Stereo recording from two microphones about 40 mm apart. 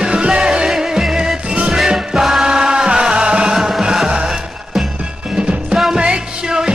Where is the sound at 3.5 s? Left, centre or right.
Centre.